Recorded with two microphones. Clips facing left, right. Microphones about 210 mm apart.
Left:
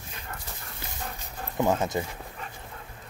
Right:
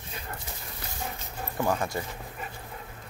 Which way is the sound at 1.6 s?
20° left (ahead or behind).